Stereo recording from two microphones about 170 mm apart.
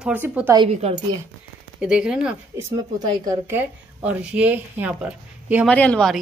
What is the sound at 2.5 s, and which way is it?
Speech, 25° right (ahead or behind).